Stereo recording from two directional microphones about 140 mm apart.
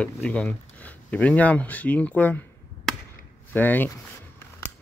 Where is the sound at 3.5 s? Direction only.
15° left (ahead or behind).